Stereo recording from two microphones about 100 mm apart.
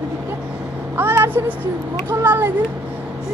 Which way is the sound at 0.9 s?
25° right (ahead or behind).